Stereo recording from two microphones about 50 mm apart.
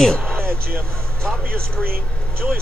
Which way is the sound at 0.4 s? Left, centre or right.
Right.